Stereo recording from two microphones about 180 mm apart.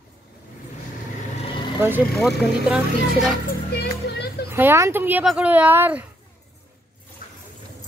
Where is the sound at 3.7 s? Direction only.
65° left (ahead or behind).